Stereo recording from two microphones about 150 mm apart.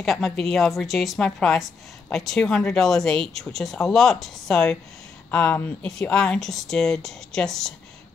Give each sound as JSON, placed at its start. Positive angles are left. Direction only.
{"t": 0.0, "sound": "a woman's voice", "side_deg": 0}